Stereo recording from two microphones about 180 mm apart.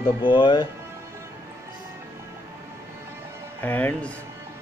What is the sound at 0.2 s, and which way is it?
Speech, 25° left (ahead or behind).